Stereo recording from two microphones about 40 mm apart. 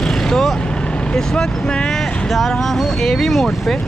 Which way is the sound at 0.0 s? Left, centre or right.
Centre.